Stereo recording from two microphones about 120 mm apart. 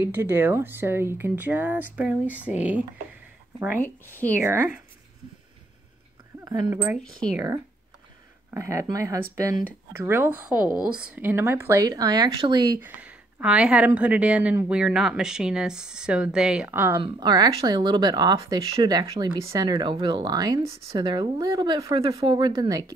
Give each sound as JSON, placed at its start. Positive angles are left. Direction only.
{"t": 0.0, "sound": "speech", "side_deg": -20}
{"t": 4.0, "sound": "speech", "side_deg": 15}
{"t": 4.4, "sound": "speech", "side_deg": -20}
{"t": 6.7, "sound": "speech", "side_deg": -15}
{"t": 7.0, "sound": "speech", "side_deg": 5}
{"t": 8.5, "sound": "speech", "side_deg": -25}
{"t": 12.8, "sound": "speech", "side_deg": -10}
{"t": 16.6, "sound": "speech", "side_deg": -15}
{"t": 17.0, "sound": "speech", "side_deg": -35}